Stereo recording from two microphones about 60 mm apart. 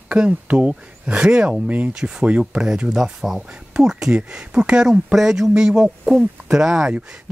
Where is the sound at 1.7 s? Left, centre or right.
Right.